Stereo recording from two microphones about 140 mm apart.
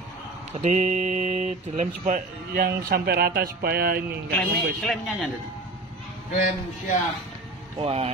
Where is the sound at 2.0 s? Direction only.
80° right.